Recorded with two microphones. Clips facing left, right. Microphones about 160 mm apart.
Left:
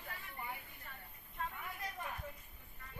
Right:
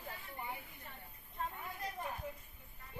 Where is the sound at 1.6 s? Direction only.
25° right (ahead or behind).